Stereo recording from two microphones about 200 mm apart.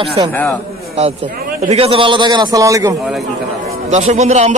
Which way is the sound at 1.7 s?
30° right (ahead or behind).